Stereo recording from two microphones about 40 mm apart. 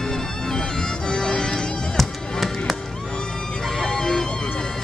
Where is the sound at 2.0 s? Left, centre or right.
Centre.